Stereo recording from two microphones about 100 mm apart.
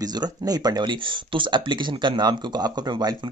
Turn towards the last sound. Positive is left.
turn(degrees=-40)  # may be behind; listen again after turning